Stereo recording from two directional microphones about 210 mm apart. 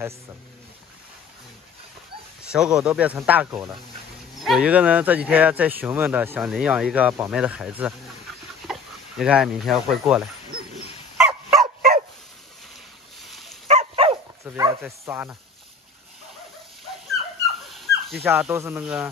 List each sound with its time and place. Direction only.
2.5 s speech: 5° right (ahead or behind)
9.2 s speech: 5° right (ahead or behind)
11.1 s dog: 5° right (ahead or behind)
11.6 s dog: 40° right (ahead or behind)
13.2 s dog: centre (ahead or behind)
13.7 s dog: 30° right (ahead or behind)
14.4 s a sound: 15° right (ahead or behind)
17.6 s dog: centre (ahead or behind)
18.2 s speech: 10° right (ahead or behind)